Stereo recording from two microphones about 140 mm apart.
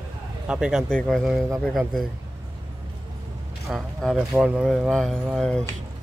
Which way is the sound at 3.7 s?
Centre (ahead or behind).